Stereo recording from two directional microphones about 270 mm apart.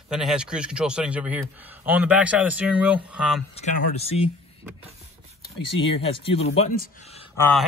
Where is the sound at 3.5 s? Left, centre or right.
Left.